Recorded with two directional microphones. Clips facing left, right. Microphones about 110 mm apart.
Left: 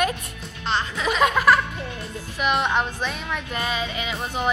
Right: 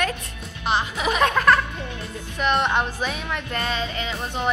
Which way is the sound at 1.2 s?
10° left (ahead or behind).